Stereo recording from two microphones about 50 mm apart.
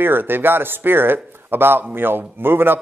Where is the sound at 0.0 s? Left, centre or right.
Right.